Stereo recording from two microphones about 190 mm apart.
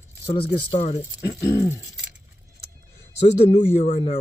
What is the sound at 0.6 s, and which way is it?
Speech, 30° left (ahead or behind).